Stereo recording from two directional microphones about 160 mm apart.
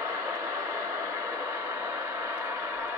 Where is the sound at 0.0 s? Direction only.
15° right (ahead or behind).